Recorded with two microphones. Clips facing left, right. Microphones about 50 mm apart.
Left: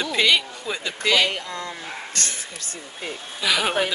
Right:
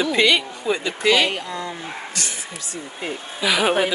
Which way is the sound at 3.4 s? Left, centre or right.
Centre.